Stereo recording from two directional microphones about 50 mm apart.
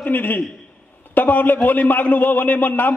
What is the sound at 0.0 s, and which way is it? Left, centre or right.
A man's voice, left.